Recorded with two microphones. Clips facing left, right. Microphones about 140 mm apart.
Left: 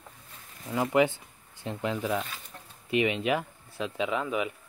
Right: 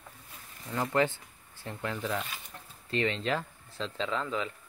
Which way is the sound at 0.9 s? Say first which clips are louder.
Left 4 dB; 15° left (ahead or behind).